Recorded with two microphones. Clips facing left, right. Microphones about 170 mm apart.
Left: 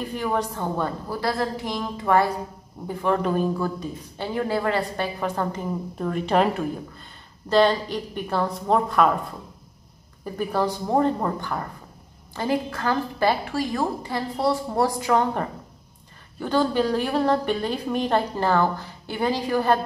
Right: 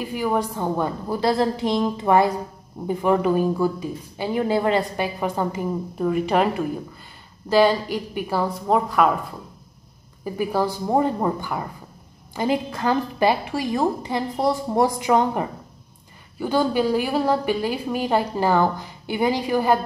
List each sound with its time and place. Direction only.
0.0 s a woman's voice: 10° right (ahead or behind)
10.2 s speech: 10° right (ahead or behind)